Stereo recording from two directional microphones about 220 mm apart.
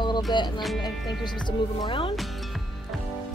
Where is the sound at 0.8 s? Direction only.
20° left (ahead or behind).